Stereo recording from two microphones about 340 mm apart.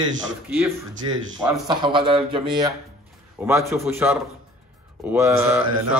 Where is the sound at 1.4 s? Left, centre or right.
Centre.